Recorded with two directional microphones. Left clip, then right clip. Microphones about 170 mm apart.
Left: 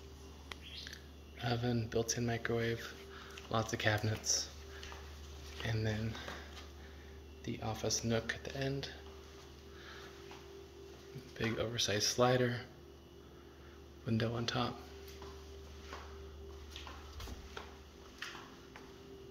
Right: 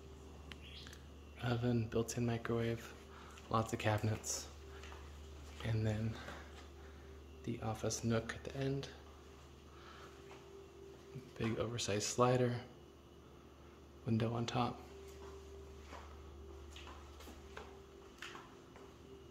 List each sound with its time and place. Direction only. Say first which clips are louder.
1.4 s speech: left 2 dB; 25° right (ahead or behind)
5.7 s speech: left 2 dB; 25° right (ahead or behind)
7.4 s speech: left 2 dB; 20° right (ahead or behind)
11.3 s speech: left 4 dB; 25° right (ahead or behind)
14.0 s speech: left 2 dB; 20° right (ahead or behind)